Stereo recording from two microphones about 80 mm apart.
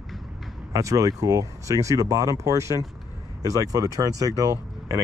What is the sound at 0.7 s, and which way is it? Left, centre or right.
Speech, right.